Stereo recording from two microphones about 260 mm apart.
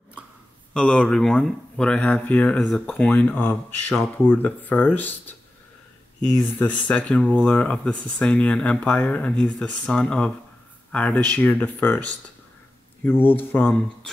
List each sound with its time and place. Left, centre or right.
0.7 s speech: centre
6.3 s speech: centre